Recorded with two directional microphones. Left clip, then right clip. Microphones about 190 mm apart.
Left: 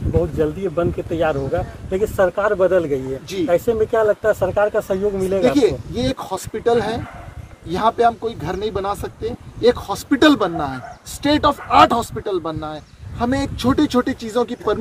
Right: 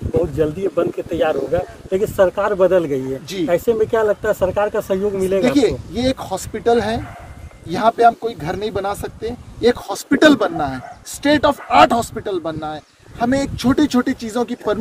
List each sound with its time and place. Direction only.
0.4 s speech: 55° right (ahead or behind)
5.4 s speech: 25° right (ahead or behind)